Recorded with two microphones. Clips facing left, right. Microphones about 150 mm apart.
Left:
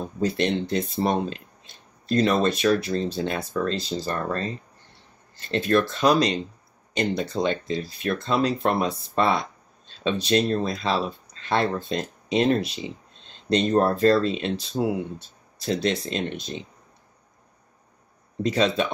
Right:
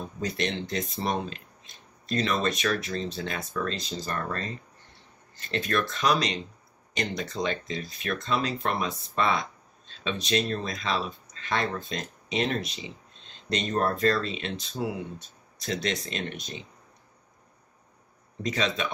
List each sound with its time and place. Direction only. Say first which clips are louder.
0.0 s speech: left 6 dB; 35° left (ahead or behind)
18.5 s speech: left 6 dB; 35° left (ahead or behind)